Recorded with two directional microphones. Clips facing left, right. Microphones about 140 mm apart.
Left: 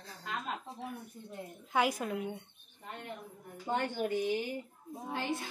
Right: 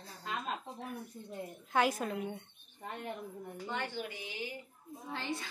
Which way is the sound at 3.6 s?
45° left (ahead or behind).